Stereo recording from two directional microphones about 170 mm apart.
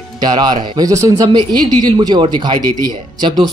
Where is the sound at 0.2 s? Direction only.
25° right (ahead or behind).